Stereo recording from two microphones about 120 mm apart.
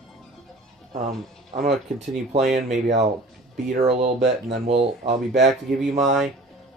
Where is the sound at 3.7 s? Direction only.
60° right (ahead or behind).